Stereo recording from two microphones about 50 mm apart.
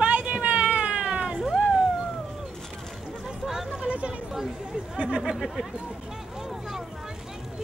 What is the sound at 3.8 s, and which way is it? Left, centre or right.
Chatter, right.